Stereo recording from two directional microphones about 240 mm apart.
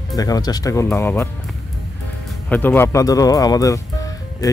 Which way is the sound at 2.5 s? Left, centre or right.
Centre.